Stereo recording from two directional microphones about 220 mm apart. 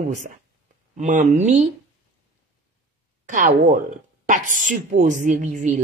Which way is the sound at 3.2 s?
35° right (ahead or behind).